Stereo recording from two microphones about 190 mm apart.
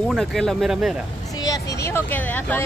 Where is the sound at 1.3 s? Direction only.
20° left (ahead or behind).